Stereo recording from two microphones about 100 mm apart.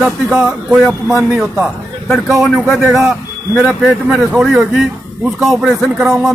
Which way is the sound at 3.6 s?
15° right (ahead or behind).